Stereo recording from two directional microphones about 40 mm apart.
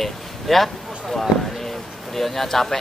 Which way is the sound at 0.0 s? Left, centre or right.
Centre.